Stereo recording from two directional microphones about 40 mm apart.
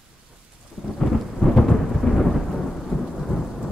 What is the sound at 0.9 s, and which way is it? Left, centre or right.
Thunder, centre.